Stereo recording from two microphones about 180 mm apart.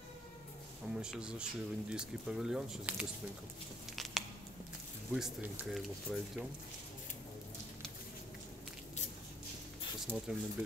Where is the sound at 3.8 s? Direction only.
Centre (ahead or behind).